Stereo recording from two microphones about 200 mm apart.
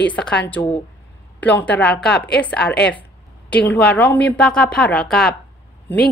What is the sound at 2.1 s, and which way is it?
Speech, 55° left (ahead or behind).